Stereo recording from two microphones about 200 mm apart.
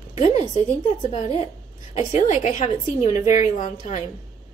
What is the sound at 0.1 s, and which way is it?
A woman's voice, 35° left (ahead or behind).